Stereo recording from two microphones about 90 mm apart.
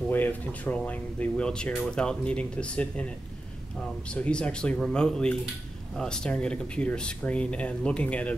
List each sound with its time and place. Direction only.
0.1 s speech: 20° left (ahead or behind)